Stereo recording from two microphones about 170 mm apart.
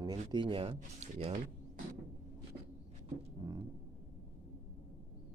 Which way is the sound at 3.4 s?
20° right (ahead or behind).